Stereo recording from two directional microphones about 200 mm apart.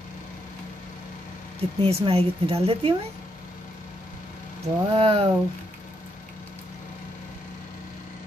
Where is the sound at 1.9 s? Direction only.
30° right (ahead or behind).